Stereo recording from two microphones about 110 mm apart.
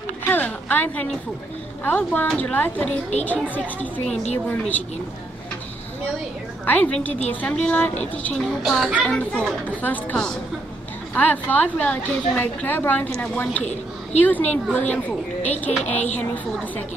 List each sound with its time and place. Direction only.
0.2 s a sound: 15° left (ahead or behind)
1.9 s a woman's voice: 15° left (ahead or behind)
6.6 s a woman's voice: 15° left (ahead or behind)
8.4 s speech: 5° right (ahead or behind)
9.1 s a woman's voice: 10° left (ahead or behind)